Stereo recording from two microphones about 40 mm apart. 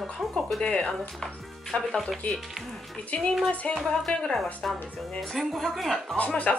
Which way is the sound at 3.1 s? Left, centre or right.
Left.